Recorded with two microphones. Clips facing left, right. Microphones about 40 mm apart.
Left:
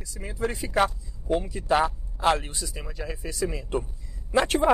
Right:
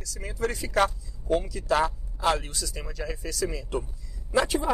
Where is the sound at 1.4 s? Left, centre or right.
Left.